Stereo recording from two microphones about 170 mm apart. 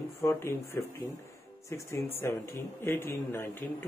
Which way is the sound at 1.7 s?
15° left (ahead or behind).